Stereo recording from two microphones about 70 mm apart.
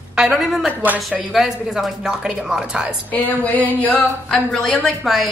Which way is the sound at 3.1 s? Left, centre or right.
Centre.